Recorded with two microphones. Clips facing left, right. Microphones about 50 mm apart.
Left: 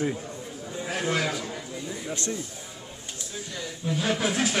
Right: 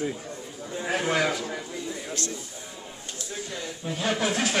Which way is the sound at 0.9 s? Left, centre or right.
Right.